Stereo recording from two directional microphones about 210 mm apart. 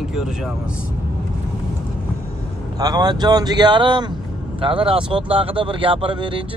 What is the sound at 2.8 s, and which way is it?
Speech, 20° right (ahead or behind).